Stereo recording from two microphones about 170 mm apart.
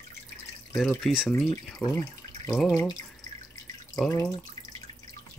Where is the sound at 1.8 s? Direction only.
20° left (ahead or behind).